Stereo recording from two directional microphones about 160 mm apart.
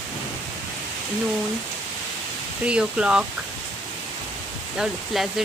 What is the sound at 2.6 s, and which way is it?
Speech, 5° right (ahead or behind).